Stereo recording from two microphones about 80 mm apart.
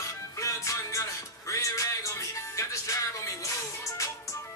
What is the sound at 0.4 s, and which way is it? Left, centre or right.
Music, left.